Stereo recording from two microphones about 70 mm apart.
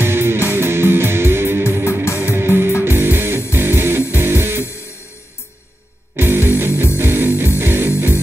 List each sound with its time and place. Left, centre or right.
0.0 s music: right
2.0 s music: left
2.3 s music: right
6.1 s music: right